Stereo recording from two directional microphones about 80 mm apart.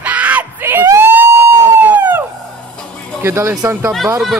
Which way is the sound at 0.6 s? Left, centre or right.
Right.